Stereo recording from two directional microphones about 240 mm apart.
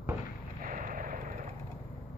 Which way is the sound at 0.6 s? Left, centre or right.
Right.